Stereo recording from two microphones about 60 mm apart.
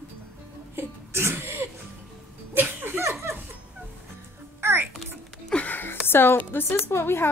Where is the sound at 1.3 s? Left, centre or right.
Right.